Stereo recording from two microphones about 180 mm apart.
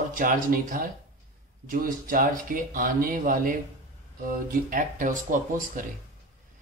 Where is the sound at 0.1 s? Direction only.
50° right (ahead or behind).